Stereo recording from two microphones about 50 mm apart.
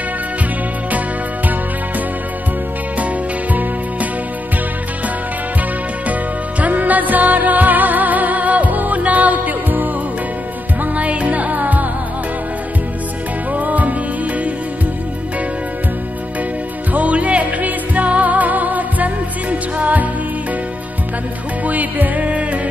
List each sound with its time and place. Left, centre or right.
6.6 s music: right
13.5 s music: right
16.9 s music: right
21.6 s music: right